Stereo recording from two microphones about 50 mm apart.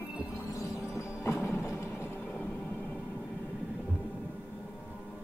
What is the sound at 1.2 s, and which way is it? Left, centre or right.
Music, left.